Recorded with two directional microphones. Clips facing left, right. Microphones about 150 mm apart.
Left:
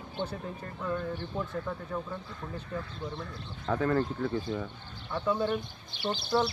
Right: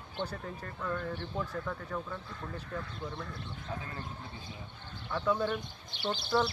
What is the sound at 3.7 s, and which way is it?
Speech, 65° left (ahead or behind).